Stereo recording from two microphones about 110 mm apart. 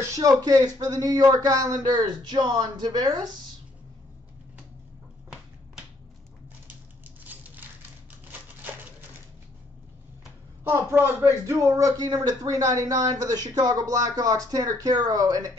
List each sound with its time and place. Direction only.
0.1 s speech: 35° right (ahead or behind)
7.2 s a sound: 15° right (ahead or behind)
10.6 s a man's voice: 20° right (ahead or behind)